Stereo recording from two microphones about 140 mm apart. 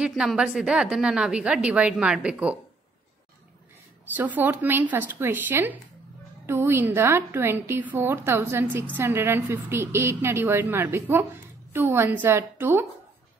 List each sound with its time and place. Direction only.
0.0 s a woman's voice: 5° right (ahead or behind)
4.1 s a woman's voice: 10° right (ahead or behind)